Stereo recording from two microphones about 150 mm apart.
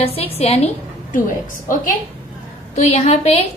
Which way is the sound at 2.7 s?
45° left (ahead or behind).